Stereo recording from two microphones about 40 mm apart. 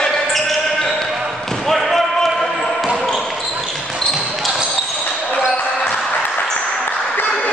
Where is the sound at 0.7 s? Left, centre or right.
Centre.